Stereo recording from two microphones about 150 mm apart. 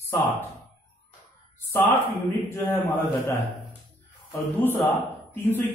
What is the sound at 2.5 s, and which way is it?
A man's voice, 20° left (ahead or behind).